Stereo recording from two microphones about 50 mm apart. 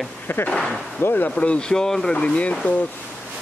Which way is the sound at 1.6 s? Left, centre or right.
Centre.